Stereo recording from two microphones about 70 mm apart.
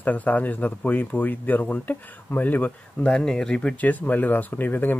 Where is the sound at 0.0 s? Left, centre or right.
Left.